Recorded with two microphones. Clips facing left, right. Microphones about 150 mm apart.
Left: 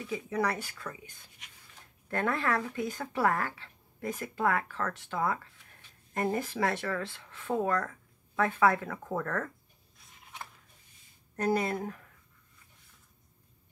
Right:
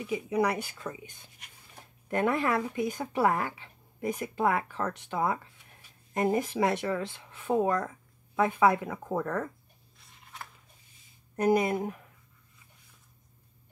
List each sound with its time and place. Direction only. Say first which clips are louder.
0.0 s speech: right 4 dB; 15° right (ahead or behind)
9.9 s a sound: even; centre (ahead or behind)
11.3 s speech: right 4 dB; 15° right (ahead or behind)